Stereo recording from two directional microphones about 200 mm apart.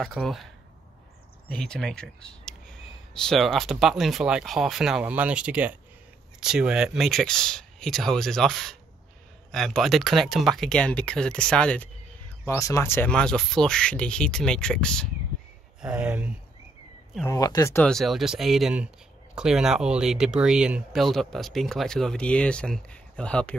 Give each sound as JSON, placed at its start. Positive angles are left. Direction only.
{"t": 0.0, "sound": "speech", "side_deg": 0}
{"t": 1.6, "sound": "speech", "side_deg": 5}
{"t": 12.4, "sound": "speech", "side_deg": 15}
{"t": 17.2, "sound": "speech", "side_deg": 15}
{"t": 17.8, "sound": "speech", "side_deg": 0}